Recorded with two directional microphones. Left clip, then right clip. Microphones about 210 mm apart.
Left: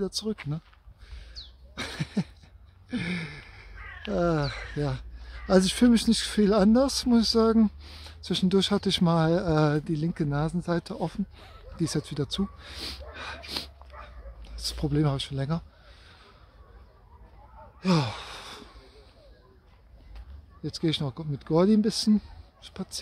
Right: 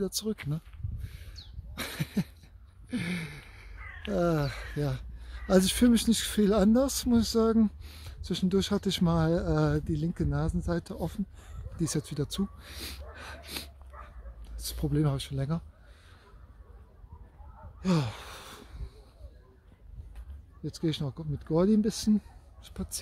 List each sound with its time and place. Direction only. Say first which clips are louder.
0.0 s speech: left 2 dB; centre (ahead or behind)
1.0 s a sound: left 8 dB; 5° right (ahead or behind)
2.9 s speech: left 3 dB; centre (ahead or behind)
11.7 s speech: left 3 dB; centre (ahead or behind)
13.1 s gasp: left 6 dB; 5° left (ahead or behind)
13.9 s dog: left 3 dB; 55° left (ahead or behind)
14.6 s speech: left 3 dB; centre (ahead or behind)
17.8 s a sound: left 4 dB; 5° left (ahead or behind)
20.6 s speech: left 4 dB; 5° left (ahead or behind)